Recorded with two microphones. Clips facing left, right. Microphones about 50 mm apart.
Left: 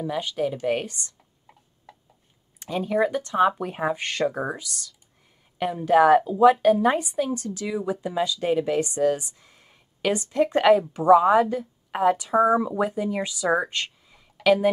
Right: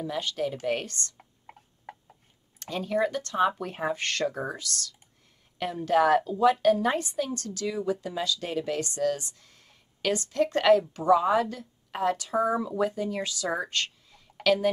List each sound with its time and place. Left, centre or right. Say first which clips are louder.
0.0 s a woman's voice: left 4 dB; centre
1.1 s a sound: right 5 dB; right
2.6 s a woman's voice: left 4 dB; centre